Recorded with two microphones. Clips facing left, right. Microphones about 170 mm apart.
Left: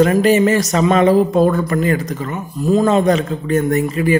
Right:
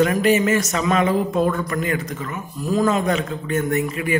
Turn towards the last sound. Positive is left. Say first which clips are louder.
# left 6 dB
turn(degrees=35)  # may be behind; listen again after turning